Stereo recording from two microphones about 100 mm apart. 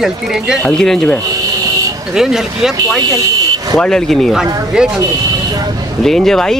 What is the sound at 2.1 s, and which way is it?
Speech, 5° right (ahead or behind).